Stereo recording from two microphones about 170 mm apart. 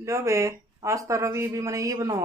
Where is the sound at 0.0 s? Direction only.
15° right (ahead or behind).